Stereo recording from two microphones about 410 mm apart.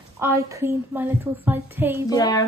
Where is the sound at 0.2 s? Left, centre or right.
Centre.